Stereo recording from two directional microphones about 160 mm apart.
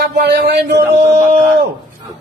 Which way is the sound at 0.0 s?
85° right.